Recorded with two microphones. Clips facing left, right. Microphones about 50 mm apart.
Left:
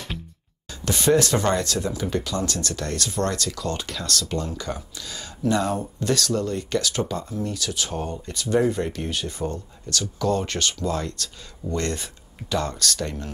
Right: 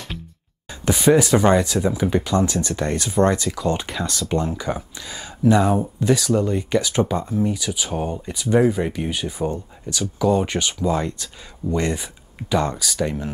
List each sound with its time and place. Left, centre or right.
0.9 s speech: centre